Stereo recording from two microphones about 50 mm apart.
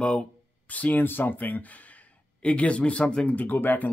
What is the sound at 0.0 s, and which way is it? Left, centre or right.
Speech, left.